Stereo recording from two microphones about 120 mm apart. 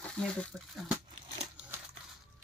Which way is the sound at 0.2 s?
5° left (ahead or behind).